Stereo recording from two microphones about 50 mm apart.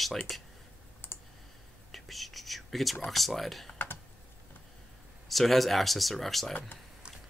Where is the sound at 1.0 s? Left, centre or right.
Left.